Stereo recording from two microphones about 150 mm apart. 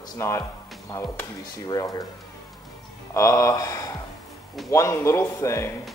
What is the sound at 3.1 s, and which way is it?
A man's voice, 20° left (ahead or behind).